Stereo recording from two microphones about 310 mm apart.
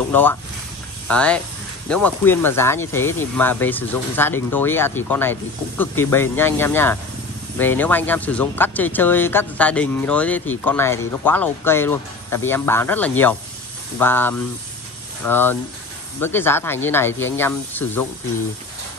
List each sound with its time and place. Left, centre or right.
0.1 s speech: centre